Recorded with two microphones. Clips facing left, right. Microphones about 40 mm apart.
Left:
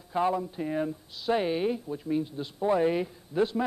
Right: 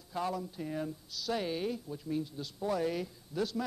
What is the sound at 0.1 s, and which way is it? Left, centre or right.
Speech, left.